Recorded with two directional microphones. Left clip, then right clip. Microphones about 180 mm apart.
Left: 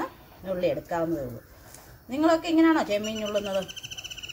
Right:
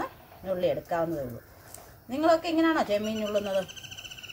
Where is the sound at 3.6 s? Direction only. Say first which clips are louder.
Left 3 dB; 55° left (ahead or behind).